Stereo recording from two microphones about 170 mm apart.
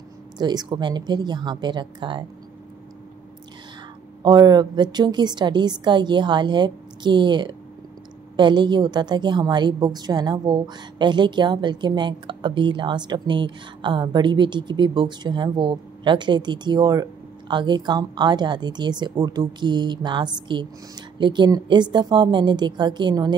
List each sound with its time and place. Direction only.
0.4 s a woman's voice: 25° right (ahead or behind)
4.2 s a woman's voice: 25° right (ahead or behind)